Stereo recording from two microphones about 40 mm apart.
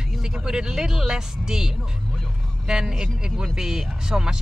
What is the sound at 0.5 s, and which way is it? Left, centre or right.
Speech, centre.